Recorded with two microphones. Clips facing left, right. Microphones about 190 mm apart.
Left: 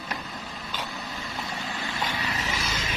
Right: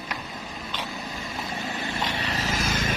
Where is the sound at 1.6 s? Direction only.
15° right (ahead or behind).